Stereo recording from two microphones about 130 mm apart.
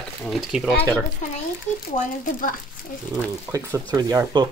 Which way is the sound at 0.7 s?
15° left (ahead or behind).